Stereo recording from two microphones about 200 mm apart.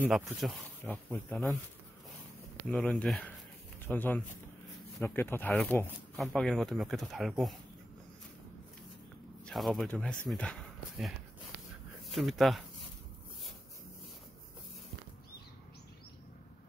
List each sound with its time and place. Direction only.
0.0 s speech: centre (ahead or behind)
2.7 s speech: centre (ahead or behind)
9.5 s speech: centre (ahead or behind)